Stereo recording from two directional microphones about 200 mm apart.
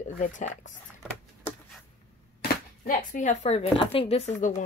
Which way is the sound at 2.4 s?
40° left (ahead or behind).